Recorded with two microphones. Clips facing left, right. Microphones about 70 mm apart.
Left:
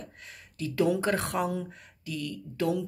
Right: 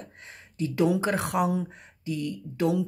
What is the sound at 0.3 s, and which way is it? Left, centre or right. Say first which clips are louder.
Speech: right 5 dB; right.